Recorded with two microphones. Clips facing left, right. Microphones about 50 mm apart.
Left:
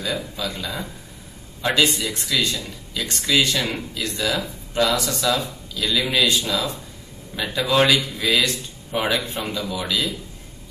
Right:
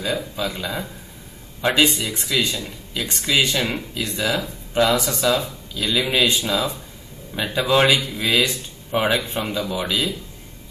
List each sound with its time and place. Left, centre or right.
0.0 s speech: centre